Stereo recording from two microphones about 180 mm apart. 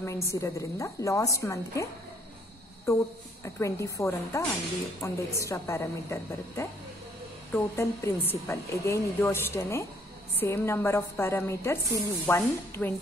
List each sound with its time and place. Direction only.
0.0 s speech: 15° left (ahead or behind)
2.9 s speech: 15° left (ahead or behind)